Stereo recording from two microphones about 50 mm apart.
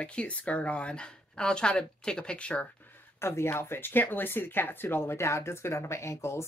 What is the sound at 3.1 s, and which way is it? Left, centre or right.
Speech, left.